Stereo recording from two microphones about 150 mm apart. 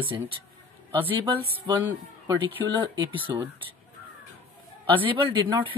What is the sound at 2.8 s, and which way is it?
Speech, 35° right (ahead or behind).